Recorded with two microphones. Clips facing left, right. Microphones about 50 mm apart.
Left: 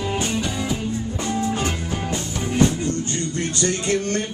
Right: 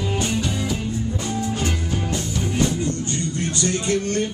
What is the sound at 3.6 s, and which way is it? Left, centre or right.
Music, left.